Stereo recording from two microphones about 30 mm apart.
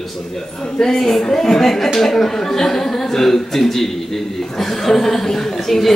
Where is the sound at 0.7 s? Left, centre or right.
Centre.